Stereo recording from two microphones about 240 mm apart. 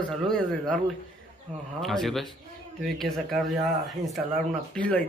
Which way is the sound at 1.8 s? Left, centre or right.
Centre.